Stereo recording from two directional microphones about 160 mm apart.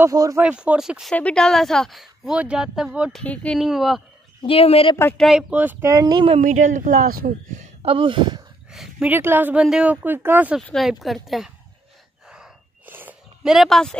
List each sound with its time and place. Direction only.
0.0 s speech: 20° right (ahead or behind)
0.4 s speech: 10° right (ahead or behind)
4.4 s a woman's voice: 35° left (ahead or behind)
4.9 s speech: 15° left (ahead or behind)
5.2 s speech: 5° right (ahead or behind); by 6.2 s 25° right (ahead or behind)
6.4 s speech: 55° right (ahead or behind)
7.8 s speech: 35° right (ahead or behind)
8.7 s speech: centre (ahead or behind)
9.1 s speech: 10° right (ahead or behind)
10.7 s speech: centre (ahead or behind)
12.3 s gasp: 10° right (ahead or behind)